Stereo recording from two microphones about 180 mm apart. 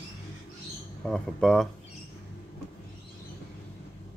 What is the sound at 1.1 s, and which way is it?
Speech, 5° left (ahead or behind).